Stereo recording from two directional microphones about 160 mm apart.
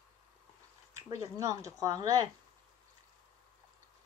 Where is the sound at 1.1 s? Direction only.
20° right (ahead or behind).